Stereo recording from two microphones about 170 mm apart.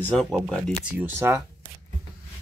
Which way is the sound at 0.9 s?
15° right (ahead or behind).